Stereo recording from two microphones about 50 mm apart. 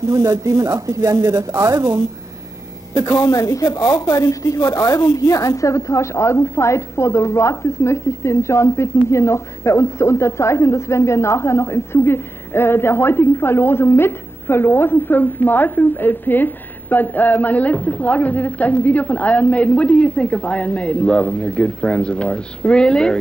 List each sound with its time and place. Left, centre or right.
0.1 s a woman's voice: right
3.1 s speech: left; by 23.1 s centre